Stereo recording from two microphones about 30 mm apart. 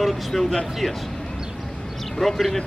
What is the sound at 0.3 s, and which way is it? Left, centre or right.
Speech, centre.